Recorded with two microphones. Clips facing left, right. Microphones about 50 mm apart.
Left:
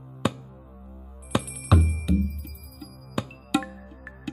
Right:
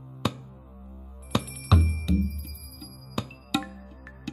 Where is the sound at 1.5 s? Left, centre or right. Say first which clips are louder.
Left 2 dB; centre.